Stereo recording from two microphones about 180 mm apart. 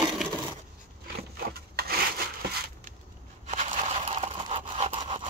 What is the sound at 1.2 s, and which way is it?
Wood, 60° right (ahead or behind).